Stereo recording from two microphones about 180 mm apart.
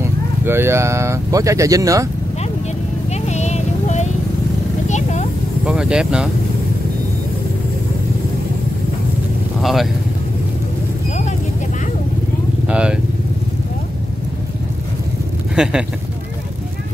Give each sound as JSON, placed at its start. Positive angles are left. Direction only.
{"t": 0.0, "sound": "speech", "side_deg": -15}
{"t": 3.1, "sound": "vehicle", "side_deg": 40}
{"t": 4.8, "sound": "clip-clop", "side_deg": 40}
{"t": 5.7, "sound": "speech", "side_deg": -5}
{"t": 9.6, "sound": "speech", "side_deg": 0}
{"t": 12.6, "sound": "speech", "side_deg": -5}
{"t": 15.5, "sound": "speech", "side_deg": -5}